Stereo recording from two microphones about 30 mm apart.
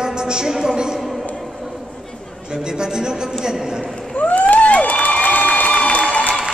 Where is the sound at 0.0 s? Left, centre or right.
Right.